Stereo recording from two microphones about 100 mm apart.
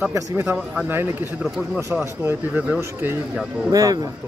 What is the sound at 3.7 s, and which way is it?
Speech, 35° right (ahead or behind).